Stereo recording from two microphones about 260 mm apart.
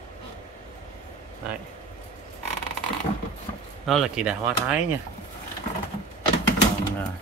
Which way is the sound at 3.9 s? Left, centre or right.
Centre.